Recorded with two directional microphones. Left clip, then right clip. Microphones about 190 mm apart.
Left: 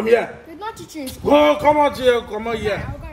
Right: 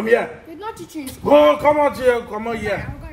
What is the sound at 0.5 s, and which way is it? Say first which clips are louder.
Speech: left 1 dB; 25° right (ahead or behind).